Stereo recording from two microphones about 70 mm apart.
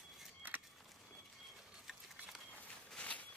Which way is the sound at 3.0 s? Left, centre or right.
Centre.